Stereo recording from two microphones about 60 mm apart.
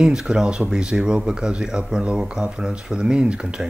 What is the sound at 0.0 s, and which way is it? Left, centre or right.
Speech, centre.